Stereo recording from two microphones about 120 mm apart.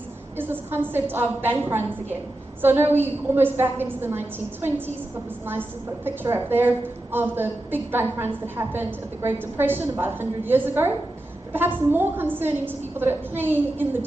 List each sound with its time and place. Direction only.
0.4 s a woman's voice: 20° right (ahead or behind)
6.0 s a woman's voice: 20° right (ahead or behind)